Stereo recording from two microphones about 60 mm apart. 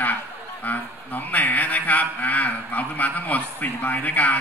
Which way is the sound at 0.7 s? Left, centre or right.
Left.